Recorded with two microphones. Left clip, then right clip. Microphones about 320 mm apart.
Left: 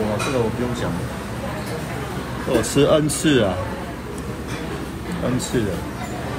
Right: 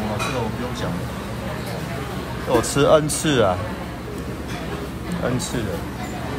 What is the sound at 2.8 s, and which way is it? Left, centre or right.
Speech, right.